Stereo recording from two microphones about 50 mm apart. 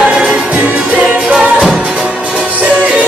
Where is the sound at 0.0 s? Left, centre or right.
Centre.